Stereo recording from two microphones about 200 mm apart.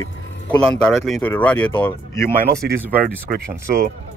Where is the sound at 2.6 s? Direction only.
50° right (ahead or behind).